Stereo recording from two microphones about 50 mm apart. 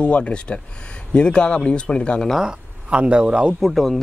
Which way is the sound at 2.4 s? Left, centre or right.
Right.